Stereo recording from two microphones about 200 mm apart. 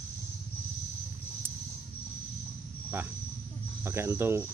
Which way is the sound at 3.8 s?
10° right (ahead or behind).